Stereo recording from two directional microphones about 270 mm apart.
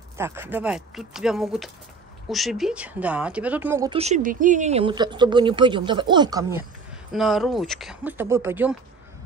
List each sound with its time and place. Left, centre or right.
0.2 s speech: centre
3.9 s speech: right
7.1 s speech: centre